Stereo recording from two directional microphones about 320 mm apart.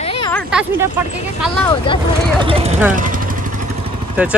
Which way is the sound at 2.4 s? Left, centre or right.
Centre.